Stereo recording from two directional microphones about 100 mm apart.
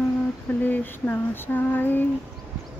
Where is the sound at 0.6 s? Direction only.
15° left (ahead or behind).